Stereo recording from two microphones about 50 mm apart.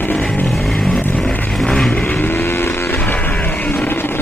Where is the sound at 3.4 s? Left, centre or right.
Left.